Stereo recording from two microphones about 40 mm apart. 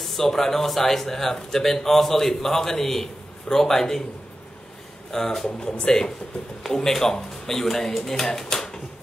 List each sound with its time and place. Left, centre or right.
0.0 s speech: centre
5.1 s speech: centre
5.6 s speech: left